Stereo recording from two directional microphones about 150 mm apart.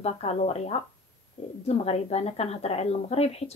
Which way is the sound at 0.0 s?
45° left (ahead or behind).